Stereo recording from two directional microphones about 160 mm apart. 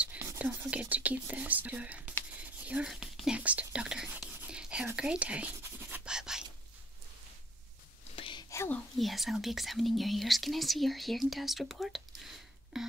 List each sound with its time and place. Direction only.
0.0 s speech: 10° right (ahead or behind)
2.3 s whispering: 10° right (ahead or behind)
8.2 s a sound: 30° left (ahead or behind)
8.5 s speech: 15° left (ahead or behind)
8.9 s speech: centre (ahead or behind)